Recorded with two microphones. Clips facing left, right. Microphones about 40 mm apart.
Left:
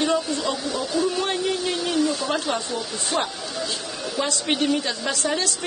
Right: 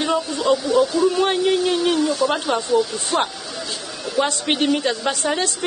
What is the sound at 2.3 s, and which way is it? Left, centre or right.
A woman's voice, right.